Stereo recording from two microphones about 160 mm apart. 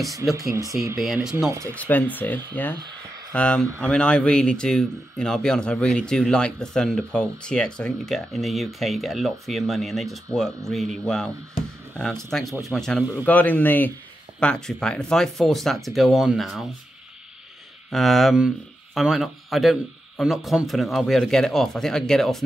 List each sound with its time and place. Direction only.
0.1 s speech: 20° right (ahead or behind)
0.9 s speech: centre (ahead or behind)
1.5 s speech: 20° right (ahead or behind)
1.8 s speech: 10° left (ahead or behind)
12.3 s speech: centre (ahead or behind)
17.9 s speech: centre (ahead or behind)